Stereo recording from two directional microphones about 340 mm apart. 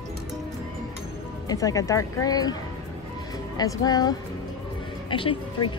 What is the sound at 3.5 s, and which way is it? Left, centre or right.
A woman's voice, centre.